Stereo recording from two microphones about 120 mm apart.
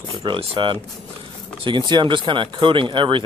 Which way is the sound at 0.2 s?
45° right (ahead or behind).